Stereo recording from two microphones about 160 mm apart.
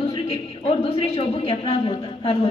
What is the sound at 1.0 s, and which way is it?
Speech, 40° left (ahead or behind).